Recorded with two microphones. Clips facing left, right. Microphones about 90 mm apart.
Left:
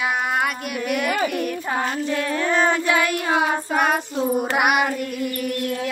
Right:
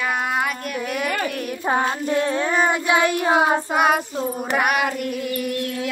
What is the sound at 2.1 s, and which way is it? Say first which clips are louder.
Child singing: right 3 dB; 30° right (ahead or behind).